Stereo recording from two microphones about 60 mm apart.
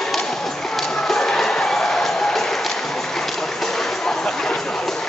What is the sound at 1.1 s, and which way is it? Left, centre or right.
Music, centre.